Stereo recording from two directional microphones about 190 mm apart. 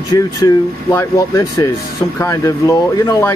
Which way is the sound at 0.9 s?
15° left (ahead or behind).